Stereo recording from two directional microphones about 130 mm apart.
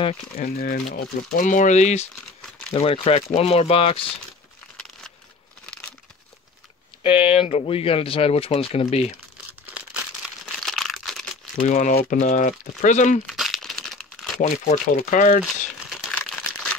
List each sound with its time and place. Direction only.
0.4 s speech: 85° left; by 2.0 s 65° left (ahead or behind)
2.7 s speech: 45° left (ahead or behind)
4.7 s a sound: 5° left (ahead or behind)
7.2 s speech: 50° left (ahead or behind)
9.5 s crumpling: 10° right (ahead or behind)
11.5 s speech: 70° left (ahead or behind)
13.3 s crumpling: centre (ahead or behind)
14.4 s speech: 65° left (ahead or behind)